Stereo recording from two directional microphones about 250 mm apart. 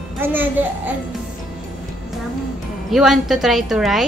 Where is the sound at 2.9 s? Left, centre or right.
Centre.